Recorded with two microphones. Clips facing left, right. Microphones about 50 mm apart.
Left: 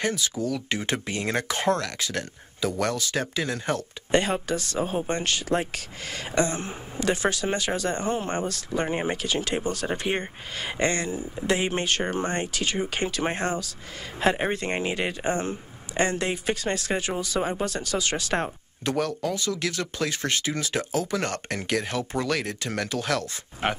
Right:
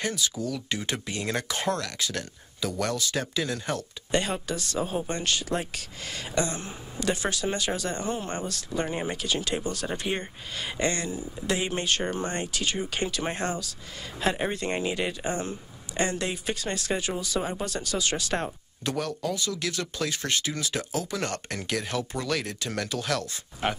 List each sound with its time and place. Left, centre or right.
0.0 s speech: left